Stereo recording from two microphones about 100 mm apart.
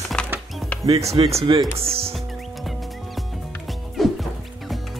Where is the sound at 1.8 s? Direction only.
75° right (ahead or behind).